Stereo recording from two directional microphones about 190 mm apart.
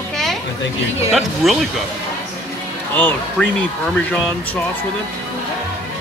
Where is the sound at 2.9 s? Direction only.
5° left (ahead or behind).